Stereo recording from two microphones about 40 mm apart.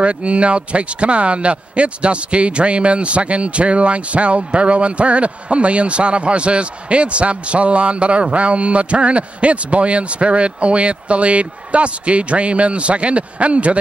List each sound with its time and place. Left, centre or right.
0.0 s speech: right